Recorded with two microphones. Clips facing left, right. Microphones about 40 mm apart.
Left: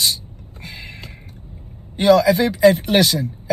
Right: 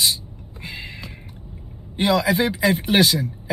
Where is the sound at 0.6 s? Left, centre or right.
Right.